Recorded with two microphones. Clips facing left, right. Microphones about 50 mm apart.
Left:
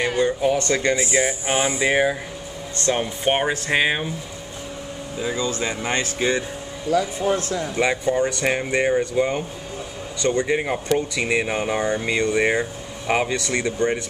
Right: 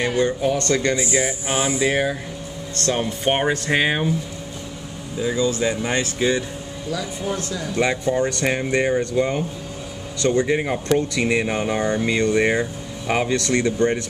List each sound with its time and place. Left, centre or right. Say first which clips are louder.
0.0 s speech: even; centre
0.9 s speech: left 1 dB; left
3.0 s speech: right 2 dB; centre
5.3 s speech: right 5 dB; left
6.9 s speech: left 6 dB; left
7.7 s speech: right 1 dB; centre